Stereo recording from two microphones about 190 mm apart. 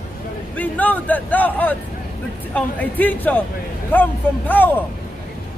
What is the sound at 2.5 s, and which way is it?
Speech, 10° left (ahead or behind).